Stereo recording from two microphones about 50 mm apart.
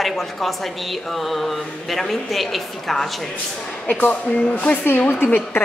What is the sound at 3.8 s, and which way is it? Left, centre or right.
Speech, left.